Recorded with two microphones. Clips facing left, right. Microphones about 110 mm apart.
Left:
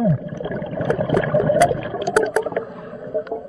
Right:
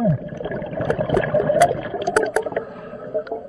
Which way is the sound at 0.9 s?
10° right (ahead or behind).